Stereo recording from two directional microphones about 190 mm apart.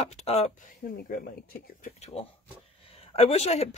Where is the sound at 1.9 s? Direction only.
35° left (ahead or behind).